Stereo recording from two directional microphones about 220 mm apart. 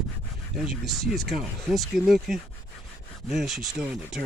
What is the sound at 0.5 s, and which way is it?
Speech, centre (ahead or behind).